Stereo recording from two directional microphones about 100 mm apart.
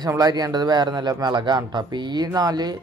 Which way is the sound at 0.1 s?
40° right (ahead or behind).